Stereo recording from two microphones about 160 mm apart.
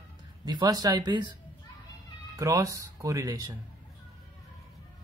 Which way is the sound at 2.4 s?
20° right (ahead or behind).